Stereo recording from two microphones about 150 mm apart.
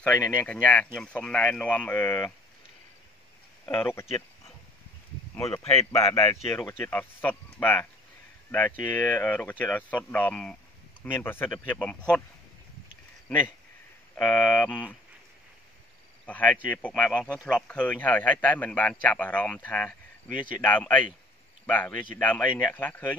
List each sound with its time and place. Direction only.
0.0 s a man's voice: 10° left (ahead or behind)
3.6 s a man's voice: 15° left (ahead or behind)
5.3 s a man's voice: 15° left (ahead or behind)
14.1 s a man's voice: 10° left (ahead or behind)
16.3 s a man's voice: 10° left (ahead or behind)